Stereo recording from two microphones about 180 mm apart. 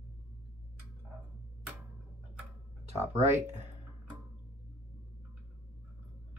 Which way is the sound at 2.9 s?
15° right (ahead or behind).